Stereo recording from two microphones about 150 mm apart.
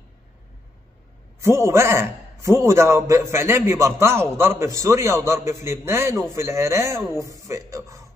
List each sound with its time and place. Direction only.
1.4 s a man's voice: 20° right (ahead or behind)